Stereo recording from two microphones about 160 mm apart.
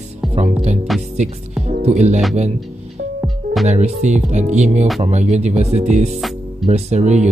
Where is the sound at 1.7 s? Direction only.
45° right (ahead or behind).